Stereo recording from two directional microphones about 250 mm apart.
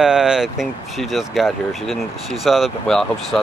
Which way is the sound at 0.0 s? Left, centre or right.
Centre.